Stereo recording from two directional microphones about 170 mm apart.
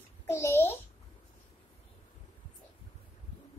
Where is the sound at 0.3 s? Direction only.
15° left (ahead or behind).